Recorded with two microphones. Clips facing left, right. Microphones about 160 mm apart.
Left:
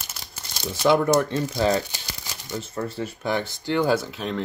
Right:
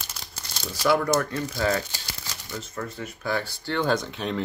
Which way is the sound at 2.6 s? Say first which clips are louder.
Left 6 dB; 30° left (ahead or behind).